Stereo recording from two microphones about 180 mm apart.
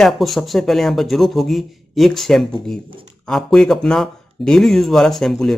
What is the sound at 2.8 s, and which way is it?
Speech, 30° right (ahead or behind).